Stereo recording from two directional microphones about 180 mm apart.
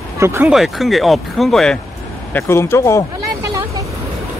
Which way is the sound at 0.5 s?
Centre (ahead or behind).